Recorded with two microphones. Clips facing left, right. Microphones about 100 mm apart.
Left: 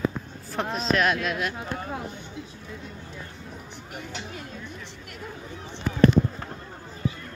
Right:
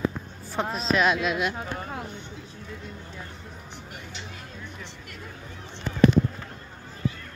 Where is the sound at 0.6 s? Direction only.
Centre (ahead or behind).